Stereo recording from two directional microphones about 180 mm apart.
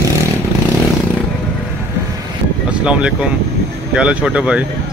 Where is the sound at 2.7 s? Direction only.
5° right (ahead or behind).